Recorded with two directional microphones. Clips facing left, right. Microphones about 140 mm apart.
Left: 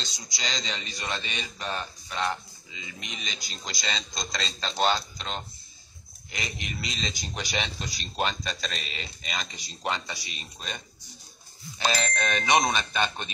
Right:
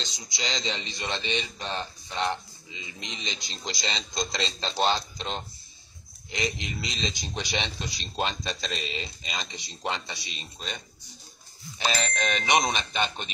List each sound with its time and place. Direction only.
0.0 s a man's voice: 20° right (ahead or behind)
12.5 s a man's voice: 20° right (ahead or behind)